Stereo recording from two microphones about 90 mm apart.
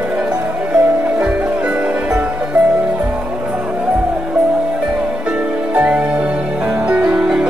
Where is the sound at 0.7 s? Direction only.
15° right (ahead or behind).